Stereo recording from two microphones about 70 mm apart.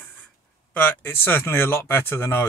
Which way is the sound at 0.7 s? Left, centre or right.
Left.